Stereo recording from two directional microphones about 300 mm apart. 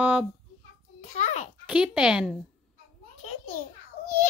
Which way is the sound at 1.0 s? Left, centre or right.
Left.